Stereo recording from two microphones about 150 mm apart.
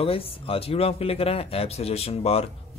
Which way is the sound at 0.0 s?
40° left (ahead or behind).